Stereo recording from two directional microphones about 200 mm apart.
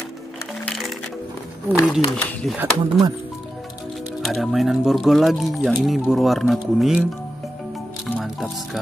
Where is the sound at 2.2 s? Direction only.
5° left (ahead or behind).